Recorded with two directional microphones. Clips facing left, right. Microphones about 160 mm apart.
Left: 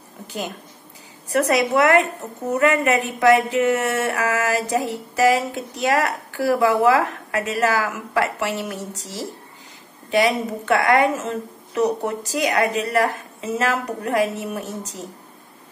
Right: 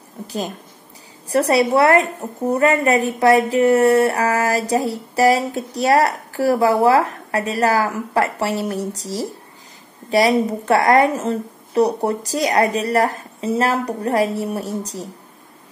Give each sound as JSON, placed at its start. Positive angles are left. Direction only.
{"t": 1.3, "sound": "speech", "side_deg": -35}